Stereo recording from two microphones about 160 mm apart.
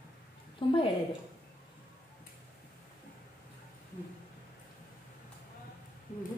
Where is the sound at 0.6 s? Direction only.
30° left (ahead or behind).